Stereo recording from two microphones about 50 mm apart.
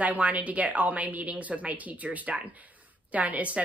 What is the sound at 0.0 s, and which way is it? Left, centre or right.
A woman's voice, right.